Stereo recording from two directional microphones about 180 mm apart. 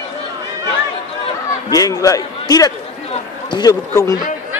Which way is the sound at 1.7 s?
20° left (ahead or behind).